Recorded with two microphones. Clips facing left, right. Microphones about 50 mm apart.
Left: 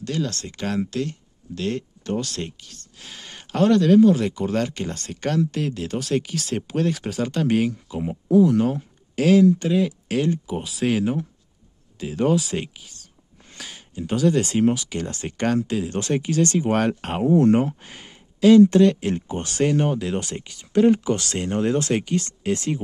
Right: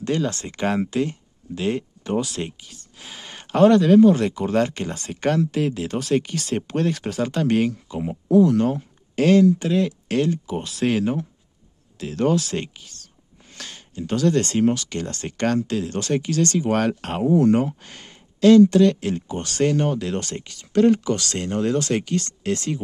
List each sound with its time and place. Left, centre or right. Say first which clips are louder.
0.0 s speech: right 3 dB; right; by 17.6 s centre
17.8 s a sound: even; centre
18.7 s speech: even; centre